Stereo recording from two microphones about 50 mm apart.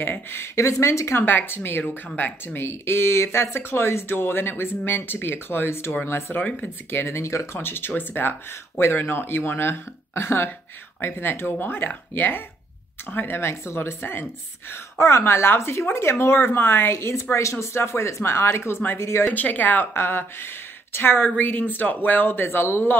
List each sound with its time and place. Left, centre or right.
0.0 s speech: left
0.6 s speech: left
1.2 s a woman's voice: left
6.5 s a woman's voice: left
7.2 s speech: left
7.5 s a woman's voice: left
8.7 s a woman's voice: left
14.7 s a woman's voice: left
18.7 s a woman's voice: left
18.9 s a woman's voice: left
19.3 s speech: left
19.9 s a woman's voice: left